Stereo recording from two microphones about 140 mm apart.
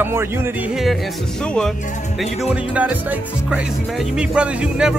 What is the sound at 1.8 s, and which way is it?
Speech, 60° left (ahead or behind).